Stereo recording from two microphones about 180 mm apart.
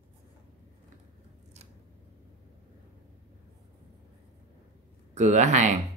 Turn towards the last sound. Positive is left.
turn(degrees=-40)  # may be behind; listen again after turning